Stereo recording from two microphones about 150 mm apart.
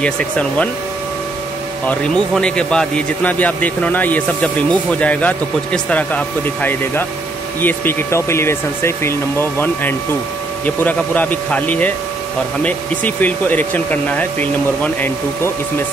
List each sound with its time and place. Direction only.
0.0 s speech: 5° left (ahead or behind)
1.9 s speech: 5° left (ahead or behind)